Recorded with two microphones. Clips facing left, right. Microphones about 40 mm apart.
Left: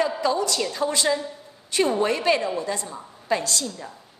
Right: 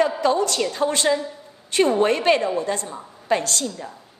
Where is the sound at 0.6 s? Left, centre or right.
Right.